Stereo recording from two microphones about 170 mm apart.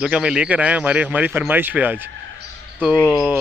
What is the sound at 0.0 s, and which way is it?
A man's voice, 5° right (ahead or behind).